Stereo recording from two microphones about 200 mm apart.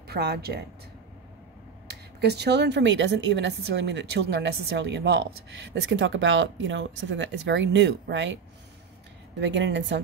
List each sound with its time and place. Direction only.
0.1 s speech: 55° right (ahead or behind)
1.9 s speech: 55° right (ahead or behind)
9.4 s speech: 65° right (ahead or behind)